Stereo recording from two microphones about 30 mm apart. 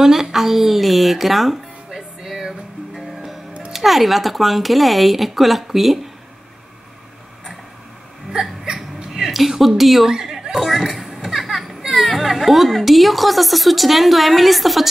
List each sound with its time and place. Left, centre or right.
0.0 s music: centre
3.7 s speech: centre
8.3 s hiccup: right
9.1 s a woman's voice: centre
10.0 s a sound: centre
10.6 s a child's voice: centre